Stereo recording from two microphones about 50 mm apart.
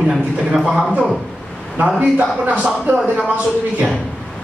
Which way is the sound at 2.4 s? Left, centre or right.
Right.